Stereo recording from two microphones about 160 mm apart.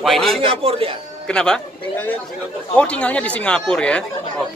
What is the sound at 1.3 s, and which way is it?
A man's voice, 5° left (ahead or behind).